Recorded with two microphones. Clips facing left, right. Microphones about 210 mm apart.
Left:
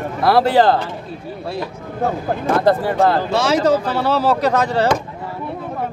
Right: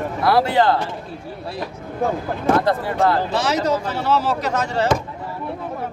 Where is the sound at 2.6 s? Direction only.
30° left (ahead or behind).